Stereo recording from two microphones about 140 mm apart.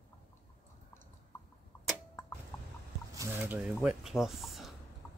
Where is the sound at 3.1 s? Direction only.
25° right (ahead or behind).